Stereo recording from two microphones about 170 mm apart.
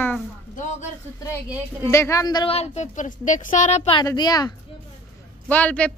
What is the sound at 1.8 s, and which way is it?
A woman's voice, 15° left (ahead or behind).